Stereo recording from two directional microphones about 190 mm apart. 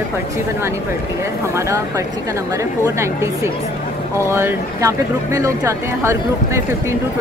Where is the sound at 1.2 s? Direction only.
15° right (ahead or behind).